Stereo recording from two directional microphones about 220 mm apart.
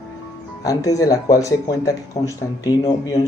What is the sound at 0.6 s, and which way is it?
Speech, 15° left (ahead or behind).